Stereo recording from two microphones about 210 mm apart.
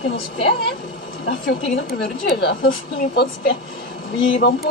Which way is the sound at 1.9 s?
50° left (ahead or behind).